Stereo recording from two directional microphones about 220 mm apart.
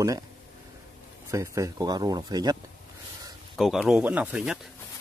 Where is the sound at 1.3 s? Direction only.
15° right (ahead or behind).